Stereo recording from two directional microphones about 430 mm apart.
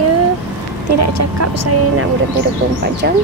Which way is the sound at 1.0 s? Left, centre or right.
Right.